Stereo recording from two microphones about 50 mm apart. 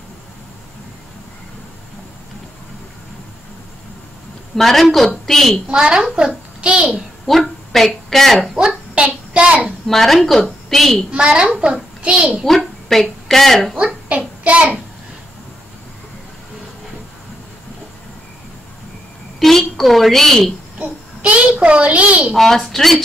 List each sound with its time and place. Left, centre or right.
4.6 s a woman's voice: centre
5.7 s a woman's voice: centre
7.2 s a woman's voice: centre
8.5 s a sound: centre
9.8 s a woman's voice: centre
11.1 s a child's voice: centre
12.4 s a woman's voice: centre
13.7 s a child's voice: right
19.4 s a woman's voice: centre
20.8 s a child's voice: right
22.3 s a woman's voice: centre